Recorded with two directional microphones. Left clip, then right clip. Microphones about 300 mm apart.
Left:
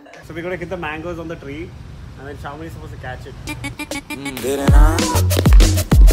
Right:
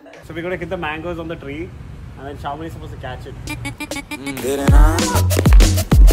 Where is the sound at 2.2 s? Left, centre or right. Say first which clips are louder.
Right 4 dB; centre.